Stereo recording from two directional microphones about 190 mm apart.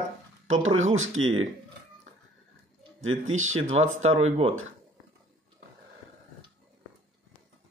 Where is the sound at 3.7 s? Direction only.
35° right (ahead or behind).